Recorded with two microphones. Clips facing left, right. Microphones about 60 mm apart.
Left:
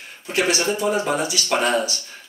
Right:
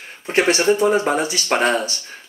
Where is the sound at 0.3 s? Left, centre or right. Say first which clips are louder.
Right 5 dB; right.